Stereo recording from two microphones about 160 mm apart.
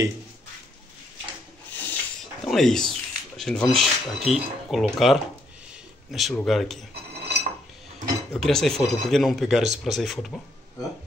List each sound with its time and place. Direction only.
1.7 s rub: 10° left (ahead or behind)
2.4 s speech: centre (ahead or behind)
6.9 s cutlery: 90° right
8.3 s speech: 5° left (ahead or behind)